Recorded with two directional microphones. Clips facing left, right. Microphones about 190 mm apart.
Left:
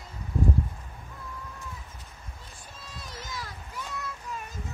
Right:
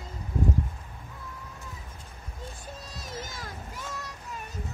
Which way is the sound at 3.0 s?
50° right (ahead or behind).